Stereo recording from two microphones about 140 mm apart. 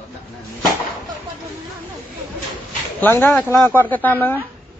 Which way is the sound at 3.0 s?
15° left (ahead or behind).